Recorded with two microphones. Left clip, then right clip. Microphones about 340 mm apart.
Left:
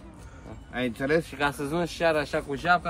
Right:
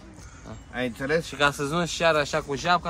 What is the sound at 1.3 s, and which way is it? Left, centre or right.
Speech, right.